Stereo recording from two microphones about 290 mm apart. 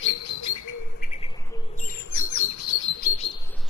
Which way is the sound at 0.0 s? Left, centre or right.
Left.